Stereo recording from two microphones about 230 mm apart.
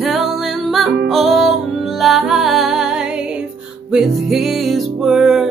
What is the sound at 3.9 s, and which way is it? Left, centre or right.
Music, centre.